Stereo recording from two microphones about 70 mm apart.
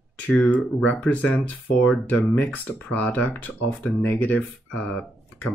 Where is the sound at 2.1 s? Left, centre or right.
Left.